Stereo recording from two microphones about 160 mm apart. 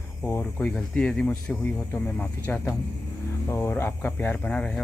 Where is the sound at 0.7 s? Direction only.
5° left (ahead or behind).